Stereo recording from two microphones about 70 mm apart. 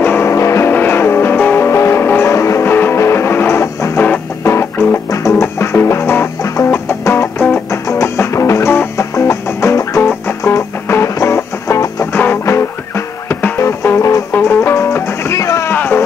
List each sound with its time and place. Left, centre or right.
0.0 s music: left
0.3 s music: left
0.7 s music: left
1.7 s music: left
15.7 s music: left